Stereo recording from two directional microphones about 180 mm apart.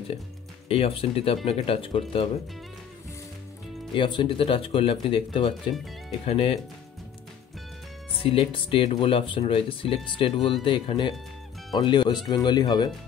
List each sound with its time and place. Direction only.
0.7 s speech: 30° left (ahead or behind)
3.9 s speech: 25° left (ahead or behind)
8.2 s speech: 30° left (ahead or behind)